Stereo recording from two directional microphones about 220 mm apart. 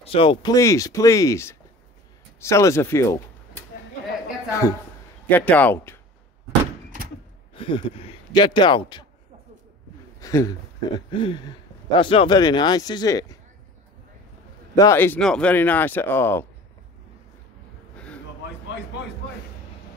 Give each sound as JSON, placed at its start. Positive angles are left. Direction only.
{"t": 0.0, "sound": "speech", "side_deg": 25}
{"t": 7.5, "sound": "speech", "side_deg": 25}
{"t": 10.2, "sound": "speech", "side_deg": 15}
{"t": 14.8, "sound": "speech", "side_deg": 10}
{"t": 17.9, "sound": "a sound", "side_deg": 5}